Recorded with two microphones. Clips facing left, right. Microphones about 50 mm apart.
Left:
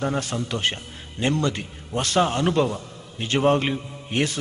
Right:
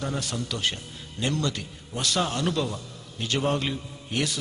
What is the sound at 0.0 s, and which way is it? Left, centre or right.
A man's voice, left.